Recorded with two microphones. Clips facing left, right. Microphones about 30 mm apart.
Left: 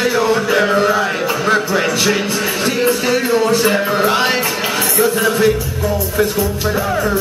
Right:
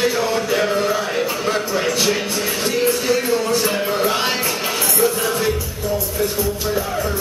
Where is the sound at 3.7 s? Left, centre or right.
Left.